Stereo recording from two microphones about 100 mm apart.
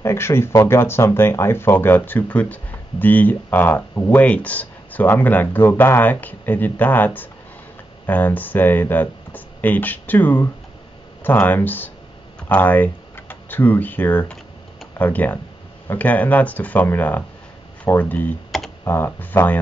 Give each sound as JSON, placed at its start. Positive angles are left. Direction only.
{"t": 0.0, "sound": "speech", "side_deg": 25}
{"t": 18.5, "sound": "computer keyboard", "side_deg": 0}
{"t": 18.9, "sound": "speech", "side_deg": 20}